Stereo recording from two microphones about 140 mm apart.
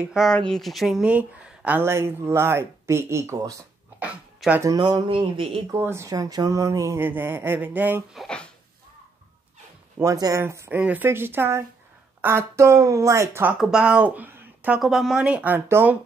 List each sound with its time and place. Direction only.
0.1 s speech: centre (ahead or behind); by 3.5 s 25° right (ahead or behind)
4.0 s a sound: 10° right (ahead or behind)
4.6 s a sound: 30° right (ahead or behind)
5.7 s speech: 20° right (ahead or behind)
8.1 s speech: 5° left (ahead or behind)
9.9 s speech: 25° right (ahead or behind)
13.6 s speech: 5° right (ahead or behind)